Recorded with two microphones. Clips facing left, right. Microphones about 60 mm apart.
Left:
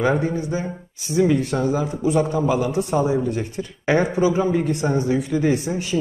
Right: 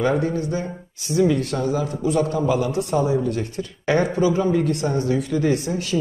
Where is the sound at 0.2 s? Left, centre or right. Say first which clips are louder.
Even; centre.